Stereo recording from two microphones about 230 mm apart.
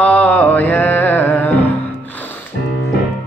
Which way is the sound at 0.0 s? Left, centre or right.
Centre.